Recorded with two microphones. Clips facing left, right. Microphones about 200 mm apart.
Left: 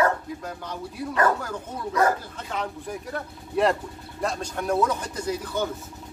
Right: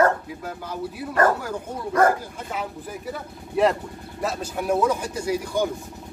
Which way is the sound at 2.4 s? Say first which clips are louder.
Left 1 dB; 5° right (ahead or behind).